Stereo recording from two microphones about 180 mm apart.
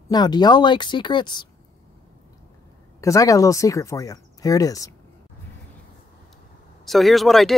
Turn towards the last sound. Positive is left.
turn(degrees=0)  # may be behind; listen again after turning